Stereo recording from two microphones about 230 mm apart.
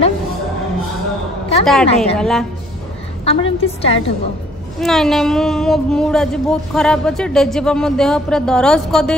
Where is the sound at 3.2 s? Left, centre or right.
Left.